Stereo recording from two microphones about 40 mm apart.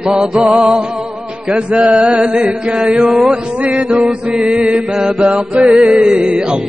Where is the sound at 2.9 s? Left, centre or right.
Centre.